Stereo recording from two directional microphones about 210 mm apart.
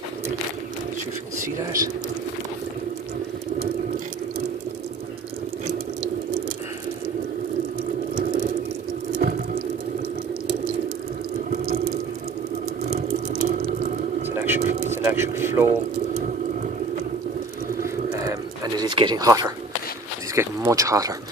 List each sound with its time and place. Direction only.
1.4 s speech: 15° right (ahead or behind)
9.2 s patter: 45° right (ahead or behind)
11.5 s water: 45° right (ahead or behind)
12.9 s water: 45° right (ahead or behind)
14.3 s a sound: 10° right (ahead or behind)
14.9 s vehicle: 10° right (ahead or behind)
18.8 s a sound: 20° right (ahead or behind)